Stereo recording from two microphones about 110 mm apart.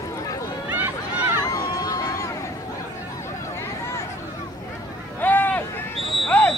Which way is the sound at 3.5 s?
25° left (ahead or behind).